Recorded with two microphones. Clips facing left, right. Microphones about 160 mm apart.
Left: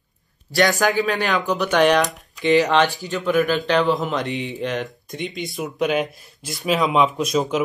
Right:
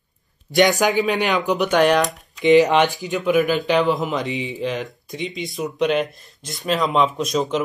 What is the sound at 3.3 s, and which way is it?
Speech, 5° right (ahead or behind).